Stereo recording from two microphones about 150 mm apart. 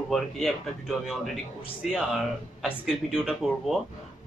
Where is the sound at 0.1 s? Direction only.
Centre (ahead or behind).